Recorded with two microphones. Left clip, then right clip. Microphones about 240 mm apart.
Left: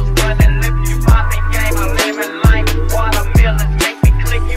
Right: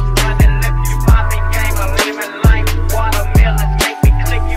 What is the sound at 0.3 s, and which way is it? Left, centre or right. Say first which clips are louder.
Music: even; centre.